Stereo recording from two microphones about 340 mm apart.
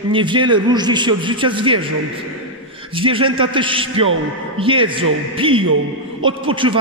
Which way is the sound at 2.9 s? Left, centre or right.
Centre.